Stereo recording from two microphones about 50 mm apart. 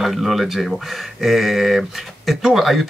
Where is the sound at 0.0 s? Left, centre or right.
Centre.